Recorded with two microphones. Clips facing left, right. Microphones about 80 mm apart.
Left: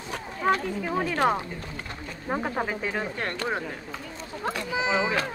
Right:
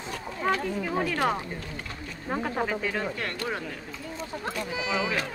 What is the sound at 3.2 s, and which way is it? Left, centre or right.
Speech, left.